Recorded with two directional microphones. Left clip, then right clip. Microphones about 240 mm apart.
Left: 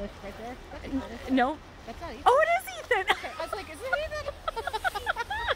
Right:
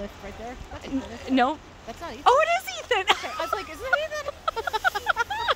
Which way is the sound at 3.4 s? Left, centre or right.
Right.